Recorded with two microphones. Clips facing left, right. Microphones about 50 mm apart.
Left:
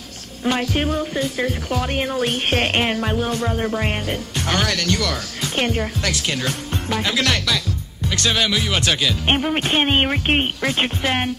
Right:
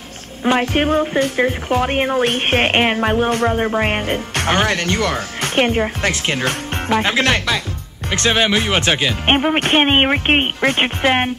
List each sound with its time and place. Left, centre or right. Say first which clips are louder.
0.4 s speech: right 5 dB; right
3.3 s speech: right 6 dB; right
3.5 s speech: right 5 dB; right